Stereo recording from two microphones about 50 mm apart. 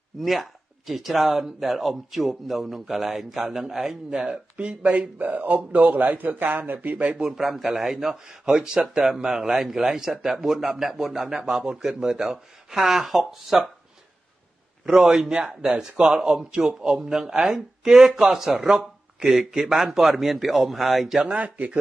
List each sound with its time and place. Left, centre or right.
0.2 s speech: centre; by 5.1 s right
5.2 s speech: right
7.2 s a man's voice: centre
14.9 s a man's voice: centre
21.4 s speech: right